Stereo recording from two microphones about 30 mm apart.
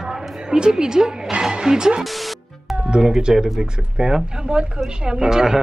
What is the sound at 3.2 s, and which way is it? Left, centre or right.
A woman's voice, right.